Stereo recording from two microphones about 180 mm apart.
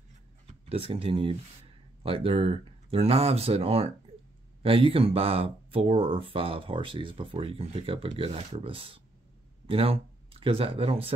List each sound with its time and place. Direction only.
0.7 s speech: 30° right (ahead or behind)